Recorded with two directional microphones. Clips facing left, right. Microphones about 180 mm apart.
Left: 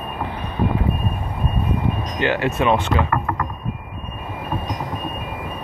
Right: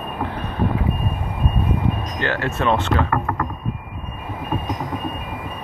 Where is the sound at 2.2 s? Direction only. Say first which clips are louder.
Left 5 dB; 15° left (ahead or behind).